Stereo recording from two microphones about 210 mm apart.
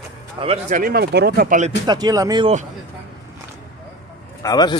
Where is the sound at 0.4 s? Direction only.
30° right (ahead or behind).